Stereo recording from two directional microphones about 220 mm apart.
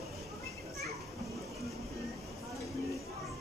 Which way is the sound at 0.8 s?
Centre (ahead or behind).